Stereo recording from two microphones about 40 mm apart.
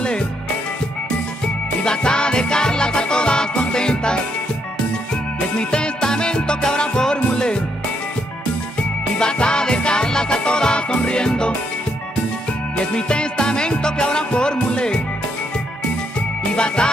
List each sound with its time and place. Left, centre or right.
0.0 s music: left
1.9 s music: left
9.2 s music: left
12.7 s music: left
16.2 s music: left